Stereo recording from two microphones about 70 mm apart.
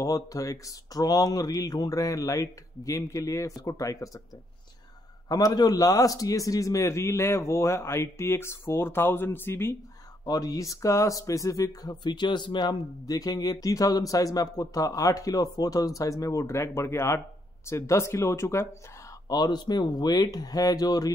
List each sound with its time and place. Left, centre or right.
0.0 s a man's voice: left
5.3 s a man's voice: left
10.2 s speech: left
19.2 s speech: left